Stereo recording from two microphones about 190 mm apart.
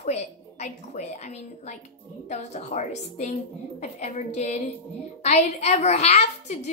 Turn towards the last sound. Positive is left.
turn(degrees=35)  # may be behind; listen again after turning